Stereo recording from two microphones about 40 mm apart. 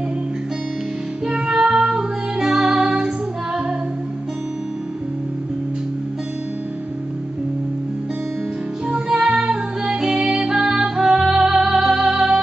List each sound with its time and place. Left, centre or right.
1.2 s music: centre
2.4 s music: centre
2.8 s music: centre
8.8 s music: right